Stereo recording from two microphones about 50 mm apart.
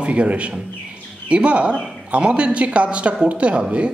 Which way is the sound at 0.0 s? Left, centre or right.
Right.